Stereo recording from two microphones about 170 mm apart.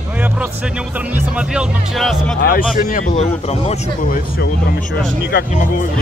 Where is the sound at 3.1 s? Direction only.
40° left (ahead or behind).